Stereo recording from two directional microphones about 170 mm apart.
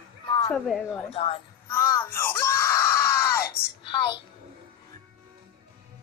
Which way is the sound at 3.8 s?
30° left (ahead or behind).